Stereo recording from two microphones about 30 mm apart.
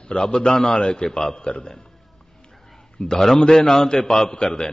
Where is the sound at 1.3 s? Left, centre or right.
Left.